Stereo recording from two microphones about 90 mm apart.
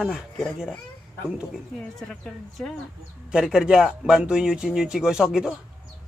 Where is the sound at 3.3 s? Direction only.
5° right (ahead or behind).